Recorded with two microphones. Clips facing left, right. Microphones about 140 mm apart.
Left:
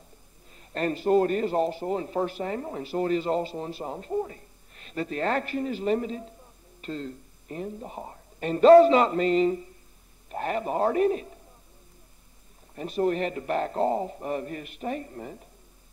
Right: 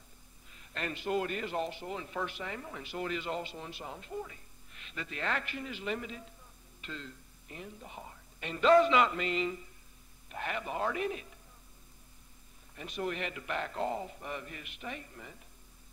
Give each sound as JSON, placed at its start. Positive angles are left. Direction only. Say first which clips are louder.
{"t": 0.5, "sound": "a man's voice", "louder": "left 11 dB", "side_deg": 40}
{"t": 12.7, "sound": "a man's voice", "louder": "left 11 dB", "side_deg": 40}